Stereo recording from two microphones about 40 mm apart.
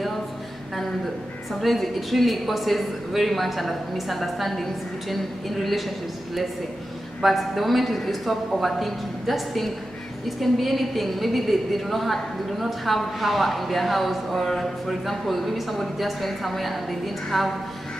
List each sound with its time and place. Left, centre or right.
1.5 s a woman's voice: centre
7.2 s a woman's voice: centre